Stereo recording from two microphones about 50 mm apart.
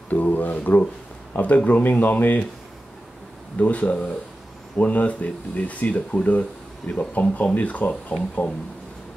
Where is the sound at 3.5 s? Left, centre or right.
Left.